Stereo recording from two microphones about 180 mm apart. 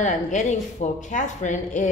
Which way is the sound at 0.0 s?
40° left (ahead or behind).